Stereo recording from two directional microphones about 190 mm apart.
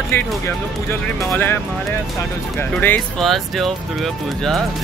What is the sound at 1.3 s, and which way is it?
Speech, 10° left (ahead or behind).